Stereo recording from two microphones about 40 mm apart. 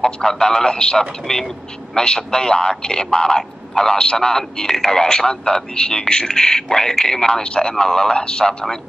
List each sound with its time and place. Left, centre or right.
0.0 s a man's voice: centre